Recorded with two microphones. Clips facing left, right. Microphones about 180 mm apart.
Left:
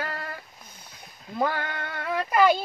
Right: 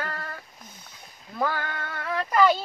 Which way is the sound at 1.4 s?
20° left (ahead or behind).